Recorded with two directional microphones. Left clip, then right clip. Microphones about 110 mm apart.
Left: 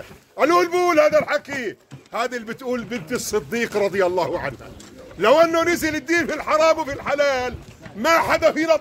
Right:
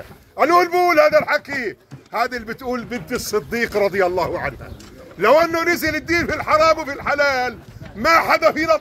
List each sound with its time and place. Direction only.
0.4 s a man's voice: 35° left (ahead or behind)